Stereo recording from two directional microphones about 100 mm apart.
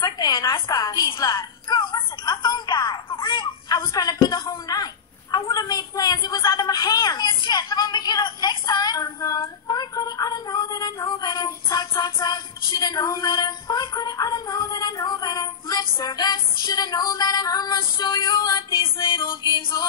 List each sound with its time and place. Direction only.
0.0 s a sound: 40° left (ahead or behind)
1.0 s a woman's voice: 35° left (ahead or behind)
1.7 s music: 40° left (ahead or behind)
3.6 s a woman's voice: 35° left (ahead or behind)
5.3 s a sound: 40° left (ahead or behind)
11.1 s child singing: 40° left (ahead or behind)
19.0 s music: 50° left (ahead or behind)